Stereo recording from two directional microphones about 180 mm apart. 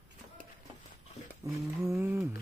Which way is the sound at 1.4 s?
20° right (ahead or behind).